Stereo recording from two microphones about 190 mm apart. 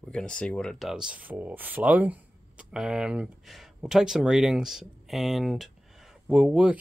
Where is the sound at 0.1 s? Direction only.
5° left (ahead or behind).